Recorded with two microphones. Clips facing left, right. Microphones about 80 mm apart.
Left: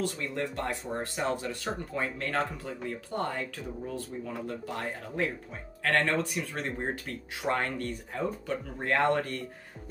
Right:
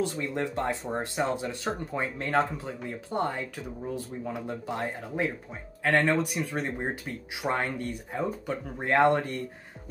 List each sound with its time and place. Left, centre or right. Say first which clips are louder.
0.0 s speech: right 3 dB; right